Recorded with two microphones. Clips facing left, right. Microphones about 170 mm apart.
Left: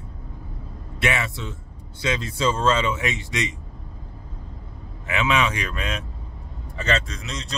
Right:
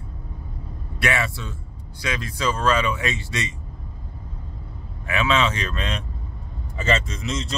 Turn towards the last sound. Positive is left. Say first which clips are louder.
# right 5 dB
turn(degrees=0)  # may be behind; listen again after turning